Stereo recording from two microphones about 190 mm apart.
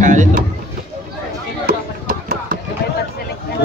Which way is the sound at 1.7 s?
50° right (ahead or behind).